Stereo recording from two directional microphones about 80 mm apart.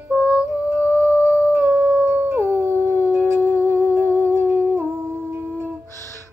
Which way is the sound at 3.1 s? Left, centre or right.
Right.